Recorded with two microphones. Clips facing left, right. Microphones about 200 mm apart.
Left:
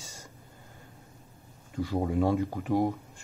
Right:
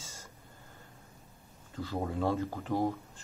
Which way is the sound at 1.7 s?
15° left (ahead or behind).